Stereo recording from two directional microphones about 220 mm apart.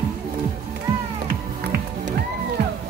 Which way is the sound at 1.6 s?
45° right (ahead or behind).